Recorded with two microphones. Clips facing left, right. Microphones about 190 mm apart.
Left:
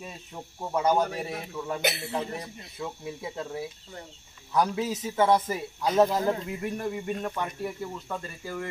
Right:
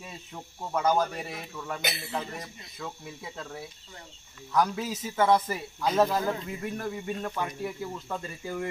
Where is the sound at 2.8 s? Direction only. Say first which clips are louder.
Left 4 dB; 15° left (ahead or behind).